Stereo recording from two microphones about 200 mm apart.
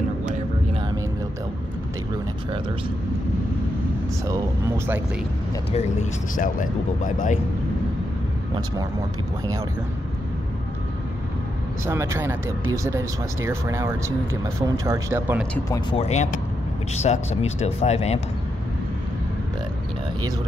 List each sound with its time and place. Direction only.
4.3 s speech: 15° right (ahead or behind)
6.3 s speech: 40° left (ahead or behind)
11.8 s speech: 15° right (ahead or behind)
15.9 s speech: 30° left (ahead or behind)